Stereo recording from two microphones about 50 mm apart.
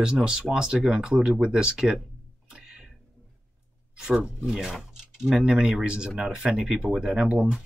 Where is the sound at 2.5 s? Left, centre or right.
Centre.